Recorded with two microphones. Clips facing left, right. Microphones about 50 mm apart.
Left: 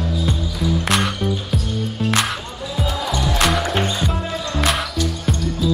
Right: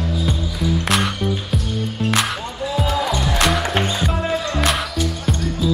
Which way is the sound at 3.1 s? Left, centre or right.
Centre.